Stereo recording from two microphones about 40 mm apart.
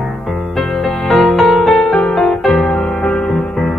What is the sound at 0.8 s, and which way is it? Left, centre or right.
Music, left.